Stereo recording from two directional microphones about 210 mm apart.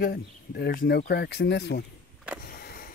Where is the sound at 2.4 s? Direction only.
45° left (ahead or behind).